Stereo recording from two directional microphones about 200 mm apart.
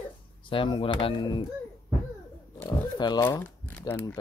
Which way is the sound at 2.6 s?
20° left (ahead or behind).